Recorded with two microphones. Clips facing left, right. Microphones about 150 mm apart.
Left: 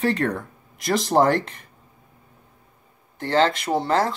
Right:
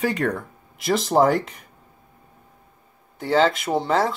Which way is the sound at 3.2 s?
5° right (ahead or behind).